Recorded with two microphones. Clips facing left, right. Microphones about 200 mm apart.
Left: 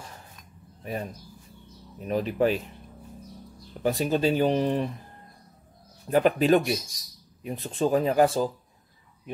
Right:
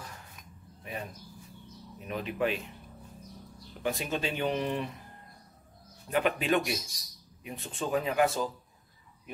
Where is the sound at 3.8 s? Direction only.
35° left (ahead or behind).